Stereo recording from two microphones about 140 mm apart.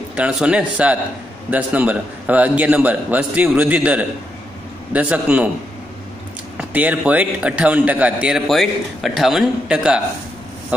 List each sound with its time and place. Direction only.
0.1 s a man's voice: 10° right (ahead or behind)
6.7 s a man's voice: 10° right (ahead or behind)